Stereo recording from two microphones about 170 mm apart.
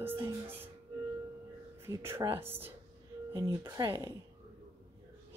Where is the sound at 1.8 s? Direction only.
15° right (ahead or behind).